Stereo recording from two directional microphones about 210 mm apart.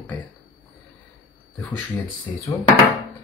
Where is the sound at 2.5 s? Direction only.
15° left (ahead or behind).